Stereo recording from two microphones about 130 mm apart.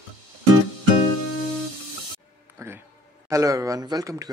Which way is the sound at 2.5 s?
20° right (ahead or behind).